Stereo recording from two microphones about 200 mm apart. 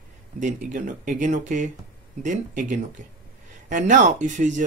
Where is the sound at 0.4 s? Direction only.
40° right (ahead or behind).